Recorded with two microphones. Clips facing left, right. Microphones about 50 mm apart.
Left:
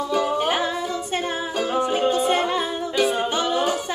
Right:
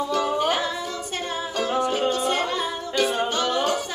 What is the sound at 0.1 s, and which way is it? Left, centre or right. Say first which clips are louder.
Music: left 2 dB; centre.